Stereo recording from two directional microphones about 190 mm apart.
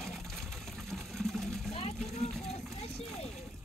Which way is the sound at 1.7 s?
35° left (ahead or behind).